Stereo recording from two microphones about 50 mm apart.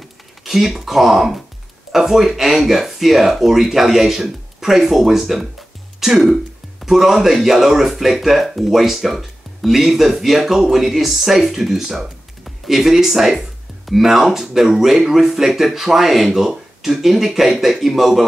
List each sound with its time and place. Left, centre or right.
0.4 s speech: centre